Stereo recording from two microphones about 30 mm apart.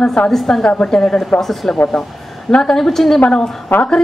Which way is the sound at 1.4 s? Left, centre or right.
Centre.